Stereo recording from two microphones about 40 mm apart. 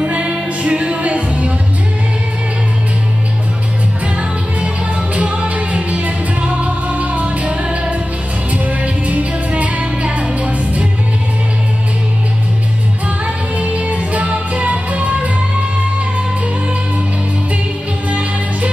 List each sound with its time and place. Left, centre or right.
0.0 s music: right
5.1 s music: right
13.2 s music: right